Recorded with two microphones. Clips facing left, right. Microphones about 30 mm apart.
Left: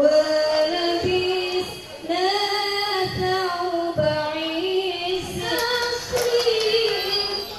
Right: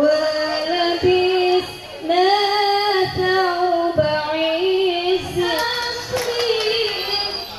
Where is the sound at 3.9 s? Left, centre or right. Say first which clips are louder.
Right 4 dB; right.